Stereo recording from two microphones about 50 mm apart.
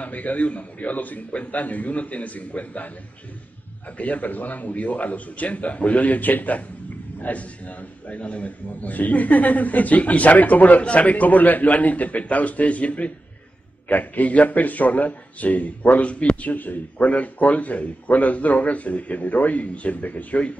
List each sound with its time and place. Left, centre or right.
0.0 s speech: left
4.0 s a man's voice: left